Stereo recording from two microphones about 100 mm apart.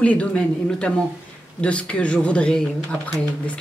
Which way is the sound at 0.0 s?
15° left (ahead or behind).